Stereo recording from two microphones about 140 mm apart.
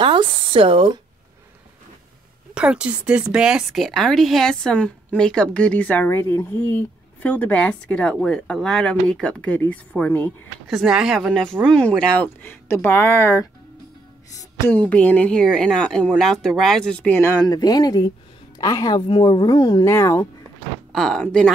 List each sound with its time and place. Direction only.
0.0 s speech: 35° right (ahead or behind)
2.5 s speech: 5° right (ahead or behind); by 10.3 s 15° left (ahead or behind)
10.7 s speech: centre (ahead or behind)
17.2 s speech: 30° left (ahead or behind)
19.8 s speech: 20° left (ahead or behind)
20.9 s speech: 5° left (ahead or behind)